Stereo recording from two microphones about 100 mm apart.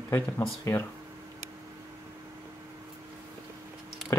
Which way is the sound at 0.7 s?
25° left (ahead or behind).